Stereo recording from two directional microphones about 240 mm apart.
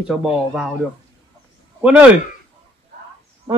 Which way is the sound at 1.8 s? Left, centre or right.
Centre.